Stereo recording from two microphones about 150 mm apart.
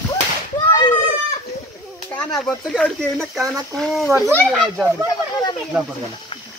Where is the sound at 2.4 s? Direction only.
5° left (ahead or behind).